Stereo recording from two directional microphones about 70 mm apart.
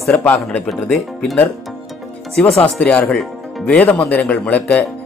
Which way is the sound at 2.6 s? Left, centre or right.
Centre.